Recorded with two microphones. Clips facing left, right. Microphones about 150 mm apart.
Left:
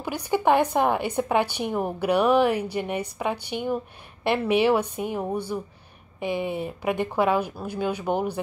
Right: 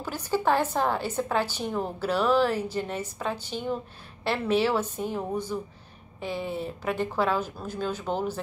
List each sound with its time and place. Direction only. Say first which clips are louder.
0.0 s a woman's voice: left 3 dB; 15° left (ahead or behind)